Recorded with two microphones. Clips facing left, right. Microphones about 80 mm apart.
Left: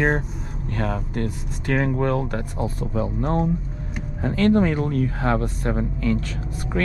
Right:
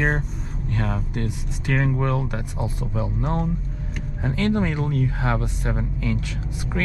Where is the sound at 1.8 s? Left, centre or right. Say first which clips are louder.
Left 2 dB; left.